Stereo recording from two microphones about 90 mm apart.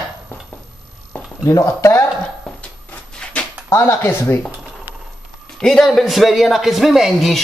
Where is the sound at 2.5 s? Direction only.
5° left (ahead or behind).